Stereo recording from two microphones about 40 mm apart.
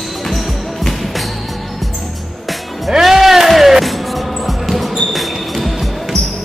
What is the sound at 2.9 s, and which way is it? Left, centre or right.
Music, centre.